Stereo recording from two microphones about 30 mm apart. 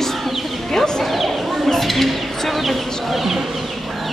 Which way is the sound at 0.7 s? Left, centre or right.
Left.